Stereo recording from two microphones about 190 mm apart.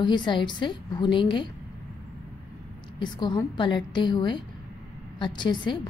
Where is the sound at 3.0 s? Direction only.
25° left (ahead or behind).